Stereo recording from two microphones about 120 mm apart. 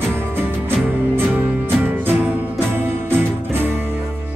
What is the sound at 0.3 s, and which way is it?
Music, 20° right (ahead or behind).